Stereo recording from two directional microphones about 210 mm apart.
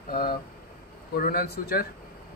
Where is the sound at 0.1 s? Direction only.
45° left (ahead or behind).